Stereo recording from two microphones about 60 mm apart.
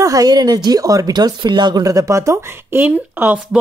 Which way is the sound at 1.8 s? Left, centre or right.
Right.